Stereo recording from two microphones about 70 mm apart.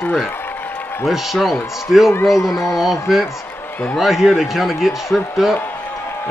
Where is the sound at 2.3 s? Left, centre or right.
Left.